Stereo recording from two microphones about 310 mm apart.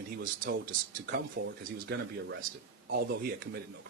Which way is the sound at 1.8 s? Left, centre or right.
Right.